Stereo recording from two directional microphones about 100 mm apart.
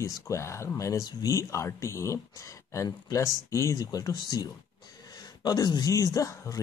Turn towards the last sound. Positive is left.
turn(degrees=35)  # may be behind; listen again after turning